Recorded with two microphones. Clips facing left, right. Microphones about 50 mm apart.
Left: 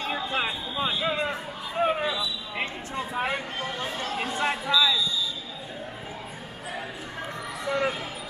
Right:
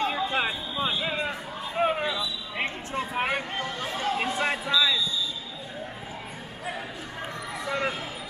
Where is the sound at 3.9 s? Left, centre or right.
Centre.